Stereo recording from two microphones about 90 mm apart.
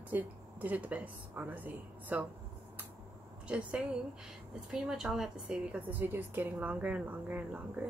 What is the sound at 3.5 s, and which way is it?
A woman's voice, 10° right (ahead or behind).